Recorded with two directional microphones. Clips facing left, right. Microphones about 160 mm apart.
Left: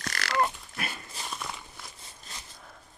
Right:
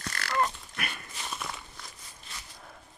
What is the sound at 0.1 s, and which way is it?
Pig, 90° left.